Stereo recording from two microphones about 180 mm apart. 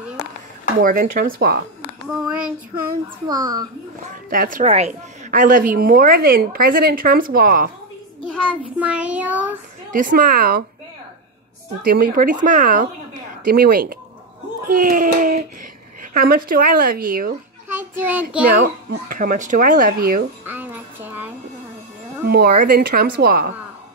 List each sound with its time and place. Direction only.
0.7 s a woman's voice: 50° right (ahead or behind)
2.0 s child singing: 5° right (ahead or behind)
3.3 s a woman's voice: 20° right (ahead or behind)
4.1 s a woman's voice: 50° right (ahead or behind)
8.5 s child singing: 5° right (ahead or behind)
9.8 s a woman's voice: 45° right (ahead or behind)
11.8 s a woman's voice: 55° right (ahead or behind)
17.6 s a sound: 10° right (ahead or behind)
19.0 s a woman's voice: 45° right (ahead or behind)
20.4 s music: 10° right (ahead or behind)
22.3 s speech: 55° right (ahead or behind)